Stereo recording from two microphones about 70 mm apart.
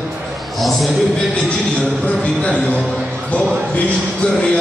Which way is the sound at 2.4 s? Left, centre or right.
Centre.